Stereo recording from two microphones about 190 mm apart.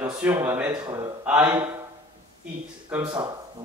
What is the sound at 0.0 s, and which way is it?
Speech, 10° right (ahead or behind).